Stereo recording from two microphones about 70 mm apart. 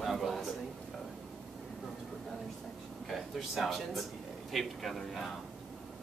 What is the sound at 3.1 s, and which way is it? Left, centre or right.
Speech, centre.